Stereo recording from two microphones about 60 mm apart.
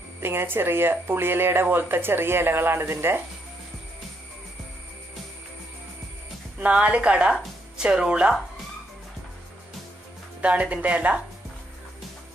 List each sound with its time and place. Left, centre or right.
0.2 s speech: right
6.6 s music: right
7.7 s speech: centre
10.4 s music: right